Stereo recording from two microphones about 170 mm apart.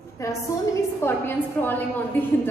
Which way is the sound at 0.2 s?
20° left (ahead or behind).